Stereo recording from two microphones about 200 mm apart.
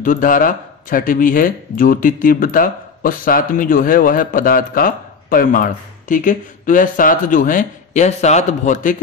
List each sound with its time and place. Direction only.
0.0 s speech: 40° left (ahead or behind)